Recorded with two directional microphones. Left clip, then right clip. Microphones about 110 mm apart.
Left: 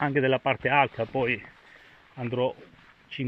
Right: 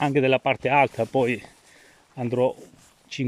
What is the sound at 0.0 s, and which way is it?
Speech, 30° right (ahead or behind).